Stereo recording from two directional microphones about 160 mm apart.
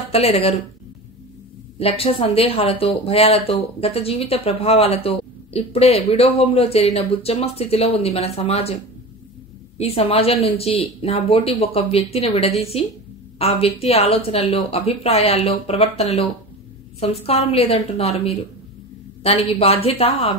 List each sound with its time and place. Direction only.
0.1 s speech: 40° left (ahead or behind)
1.8 s speech: 35° left (ahead or behind)
9.8 s speech: 40° left (ahead or behind)